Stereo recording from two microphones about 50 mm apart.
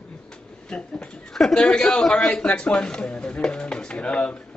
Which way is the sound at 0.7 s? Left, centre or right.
Centre.